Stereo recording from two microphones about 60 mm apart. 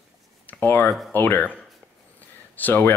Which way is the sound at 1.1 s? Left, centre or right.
Left.